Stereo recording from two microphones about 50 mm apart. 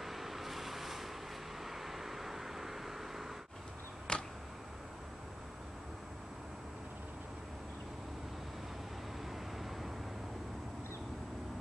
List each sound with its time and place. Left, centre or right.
0.0 s vehicle: centre
4.1 s a sound: centre
9.2 s vehicle: centre